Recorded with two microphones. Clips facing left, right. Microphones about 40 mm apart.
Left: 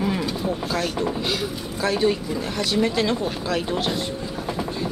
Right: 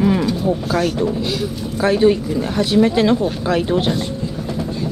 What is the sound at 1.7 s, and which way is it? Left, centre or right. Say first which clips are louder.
Speech: right 7 dB; centre.